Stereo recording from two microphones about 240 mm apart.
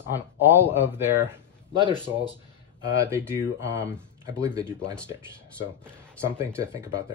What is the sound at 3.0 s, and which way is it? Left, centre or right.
Speech, centre.